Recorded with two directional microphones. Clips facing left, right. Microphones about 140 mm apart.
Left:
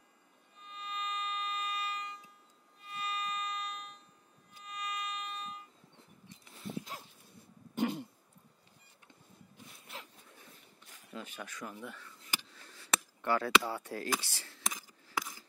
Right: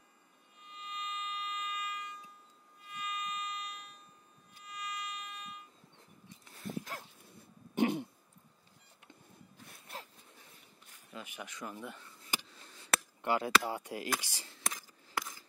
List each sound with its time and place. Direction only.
0.7 s music: 35° left (ahead or behind)
2.9 s violin: 30° left (ahead or behind)
4.6 s music: 25° left (ahead or behind)
6.5 s dog: 40° right (ahead or behind)
7.7 s throat clearing: 60° right (ahead or behind)
11.1 s a sound: 15° right (ahead or behind)
13.2 s speech: 15° right (ahead or behind)